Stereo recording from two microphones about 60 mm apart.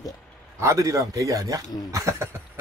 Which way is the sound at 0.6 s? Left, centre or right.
Right.